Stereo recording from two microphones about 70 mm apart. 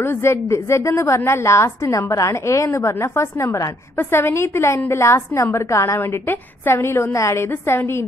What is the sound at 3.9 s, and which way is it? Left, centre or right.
A woman's voice, left.